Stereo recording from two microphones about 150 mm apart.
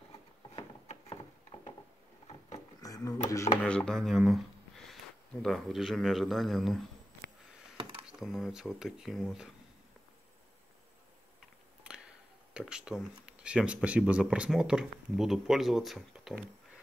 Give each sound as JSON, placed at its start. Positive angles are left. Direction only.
{"t": 2.8, "sound": "speech", "side_deg": 25}
{"t": 3.6, "sound": "speech", "side_deg": 5}
{"t": 8.1, "sound": "speech", "side_deg": 0}
{"t": 12.5, "sound": "speech", "side_deg": -5}